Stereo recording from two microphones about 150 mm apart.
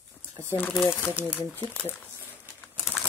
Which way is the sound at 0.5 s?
10° left (ahead or behind).